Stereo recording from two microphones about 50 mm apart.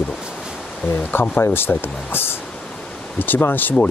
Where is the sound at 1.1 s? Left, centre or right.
Left.